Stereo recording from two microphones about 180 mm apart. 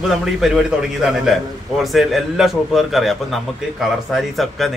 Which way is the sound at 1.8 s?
Centre (ahead or behind).